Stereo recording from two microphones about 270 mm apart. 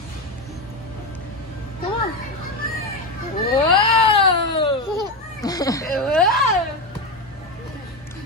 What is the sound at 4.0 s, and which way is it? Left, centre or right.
Baby cry, centre.